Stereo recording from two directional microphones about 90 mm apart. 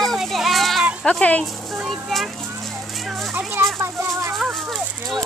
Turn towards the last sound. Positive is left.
turn(degrees=0)  # may be behind; listen again after turning